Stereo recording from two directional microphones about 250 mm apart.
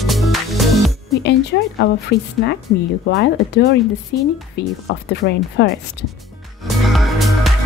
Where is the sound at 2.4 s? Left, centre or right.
Left.